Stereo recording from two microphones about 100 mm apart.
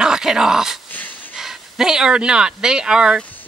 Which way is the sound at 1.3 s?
5° right (ahead or behind).